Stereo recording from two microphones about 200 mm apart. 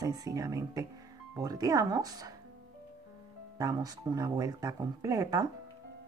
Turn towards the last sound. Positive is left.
turn(degrees=-15)  # may be behind; listen again after turning